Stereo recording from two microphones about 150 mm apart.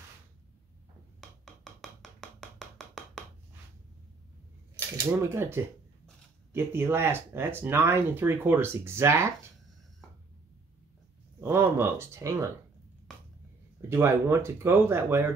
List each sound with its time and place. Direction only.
1.4 s a sound: centre (ahead or behind)
5.2 s speech: 15° right (ahead or behind)
11.4 s speech: 15° right (ahead or behind)
13.7 s speech: 15° right (ahead or behind)